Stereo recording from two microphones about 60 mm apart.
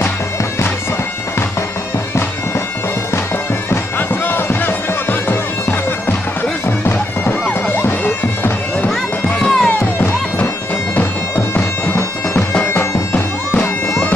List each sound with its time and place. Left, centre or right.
3.7 s bagpipes: left
9.4 s music: centre
11.0 s bagpipes: left